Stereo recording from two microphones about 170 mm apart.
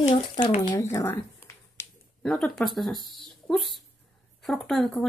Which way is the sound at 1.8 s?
15° left (ahead or behind).